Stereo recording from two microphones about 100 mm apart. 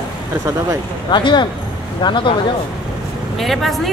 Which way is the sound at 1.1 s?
50° left (ahead or behind).